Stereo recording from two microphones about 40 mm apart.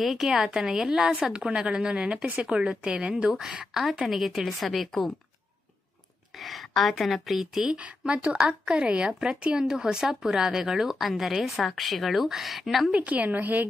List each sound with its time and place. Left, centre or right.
0.0 s a woman's voice: centre; by 3.4 s right
3.4 s speech: centre
6.3 s speech: centre
7.7 s a woman's voice: right; by 12.9 s centre
12.9 s a woman's voice: right